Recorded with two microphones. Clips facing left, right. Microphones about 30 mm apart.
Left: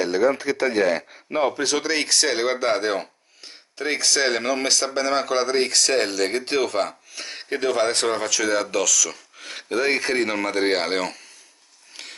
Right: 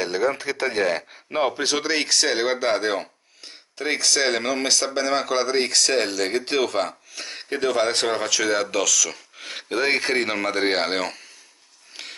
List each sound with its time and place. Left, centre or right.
0.0 s speech: right
1.3 s speech: right
11.9 s a sound: centre